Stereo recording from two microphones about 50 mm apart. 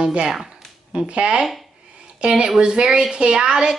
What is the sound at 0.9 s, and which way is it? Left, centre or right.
Speech, right.